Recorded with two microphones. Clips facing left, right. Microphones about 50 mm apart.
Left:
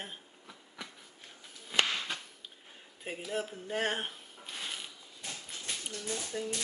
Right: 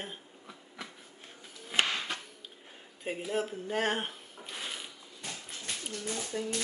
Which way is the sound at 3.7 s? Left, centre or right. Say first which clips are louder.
Right 1 dB; centre.